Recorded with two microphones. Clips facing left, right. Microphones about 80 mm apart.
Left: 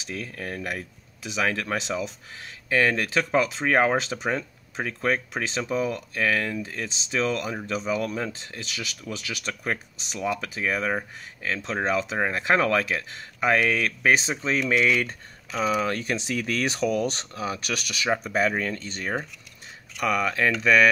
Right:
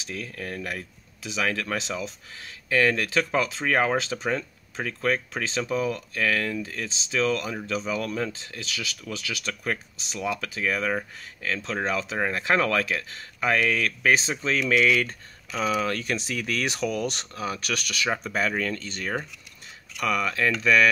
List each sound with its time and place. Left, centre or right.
0.0 s speech: left